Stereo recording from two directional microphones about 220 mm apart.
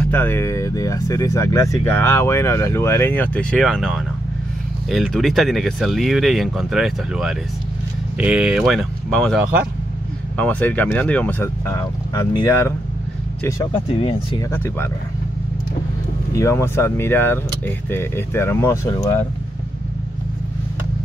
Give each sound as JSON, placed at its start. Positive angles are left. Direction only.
{"t": 0.0, "sound": "speech", "side_deg": 10}
{"t": 13.8, "sound": "speech", "side_deg": 25}
{"t": 14.5, "sound": "speech", "side_deg": 10}
{"t": 16.3, "sound": "speech", "side_deg": 10}